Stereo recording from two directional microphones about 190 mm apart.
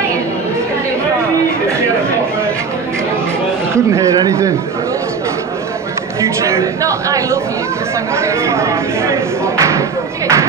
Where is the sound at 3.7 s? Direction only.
15° right (ahead or behind).